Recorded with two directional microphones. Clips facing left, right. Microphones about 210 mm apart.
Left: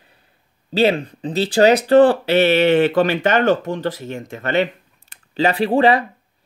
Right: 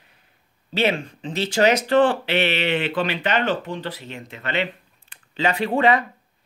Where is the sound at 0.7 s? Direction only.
35° left (ahead or behind).